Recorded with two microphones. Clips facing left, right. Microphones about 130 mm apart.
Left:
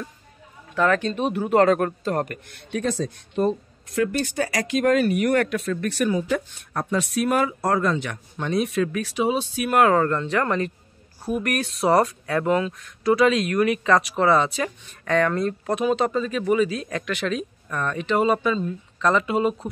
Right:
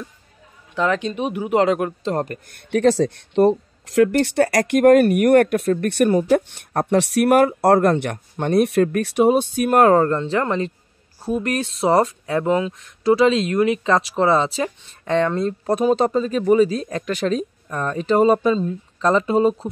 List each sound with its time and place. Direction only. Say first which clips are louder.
0.7 s speech: even; 15° right (ahead or behind)
2.1 s speech: right 2 dB; 30° right (ahead or behind)
2.7 s speech: right 9 dB; 80° right; by 15.7 s 25° right (ahead or behind)
15.7 s speech: right 5 dB; 40° right (ahead or behind)